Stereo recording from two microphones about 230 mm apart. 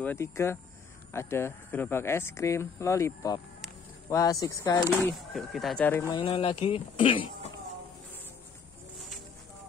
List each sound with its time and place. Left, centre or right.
0.0 s speech: centre
5.3 s speech: centre
6.1 s speech: left